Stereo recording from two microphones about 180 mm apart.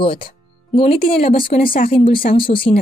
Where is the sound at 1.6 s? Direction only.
55° left (ahead or behind).